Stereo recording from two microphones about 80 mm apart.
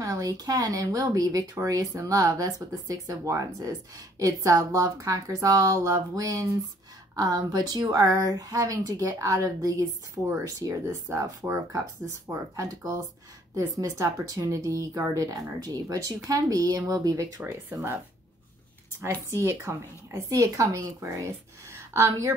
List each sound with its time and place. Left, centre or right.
0.0 s speech: right
12.3 s speech: right
17.5 s speech: right
19.0 s a woman's voice: right